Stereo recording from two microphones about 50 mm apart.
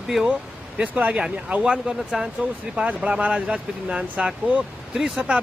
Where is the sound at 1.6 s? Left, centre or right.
Centre.